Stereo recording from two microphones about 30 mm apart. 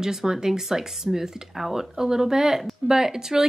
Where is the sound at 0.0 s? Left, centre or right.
Centre.